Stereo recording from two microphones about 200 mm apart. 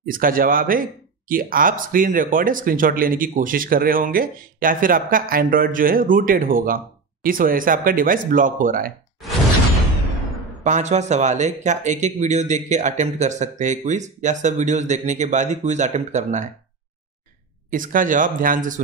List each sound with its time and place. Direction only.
0.0 s speech: 45° right (ahead or behind)
10.6 s speech: 35° right (ahead or behind)
17.6 s speech: 40° right (ahead or behind)